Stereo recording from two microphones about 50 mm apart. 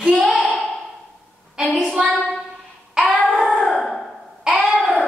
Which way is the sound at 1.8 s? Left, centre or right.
Centre.